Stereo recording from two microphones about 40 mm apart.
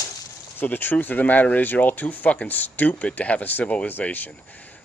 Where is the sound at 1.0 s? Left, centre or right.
Left.